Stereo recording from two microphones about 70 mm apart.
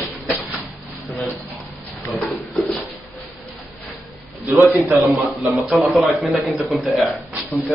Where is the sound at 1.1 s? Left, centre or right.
Left.